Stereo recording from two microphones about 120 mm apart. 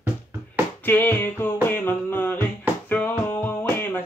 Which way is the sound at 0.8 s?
15° left (ahead or behind).